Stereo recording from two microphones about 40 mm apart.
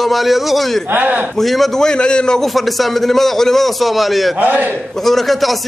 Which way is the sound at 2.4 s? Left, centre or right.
Centre.